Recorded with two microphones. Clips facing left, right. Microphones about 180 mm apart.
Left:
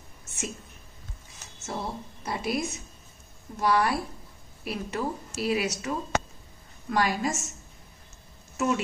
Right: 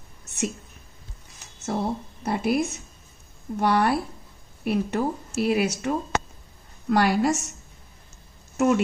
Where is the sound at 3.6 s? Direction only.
60° right (ahead or behind).